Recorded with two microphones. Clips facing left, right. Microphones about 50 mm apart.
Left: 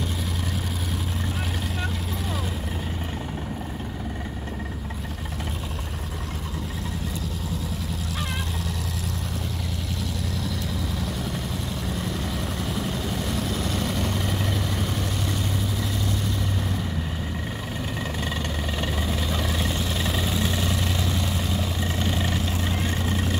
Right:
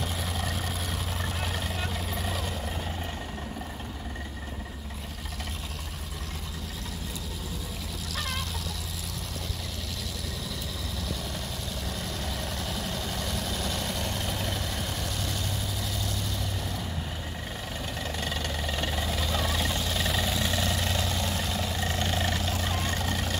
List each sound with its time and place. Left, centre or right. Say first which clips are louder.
12.2 s vehicle: left 4 dB; centre
18.2 s vehicle: left 3 dB; centre